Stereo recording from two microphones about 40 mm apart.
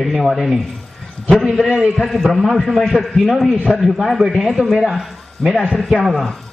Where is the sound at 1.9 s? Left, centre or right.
Centre.